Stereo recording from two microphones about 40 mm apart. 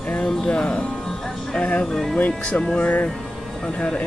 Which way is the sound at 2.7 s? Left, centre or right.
Left.